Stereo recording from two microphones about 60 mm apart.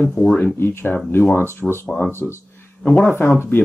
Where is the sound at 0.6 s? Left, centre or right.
Left.